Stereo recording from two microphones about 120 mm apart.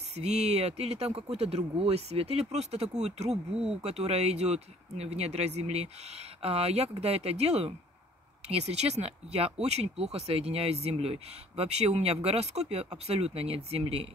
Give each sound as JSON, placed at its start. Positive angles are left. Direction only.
{"t": 0.1, "sound": "speech", "side_deg": -65}